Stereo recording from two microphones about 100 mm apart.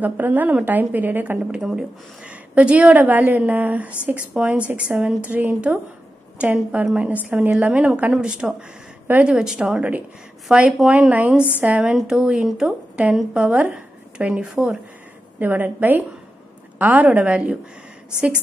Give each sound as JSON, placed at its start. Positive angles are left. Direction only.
{"t": 0.0, "sound": "speech", "side_deg": -15}
{"t": 1.6, "sound": "speech", "side_deg": -5}